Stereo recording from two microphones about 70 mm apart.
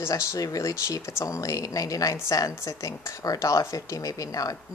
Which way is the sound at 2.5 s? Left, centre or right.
Left.